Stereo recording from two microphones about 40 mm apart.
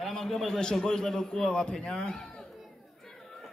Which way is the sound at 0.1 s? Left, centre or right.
Centre.